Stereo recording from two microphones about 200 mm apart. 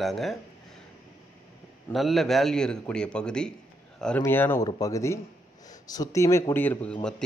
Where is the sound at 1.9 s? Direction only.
Centre (ahead or behind).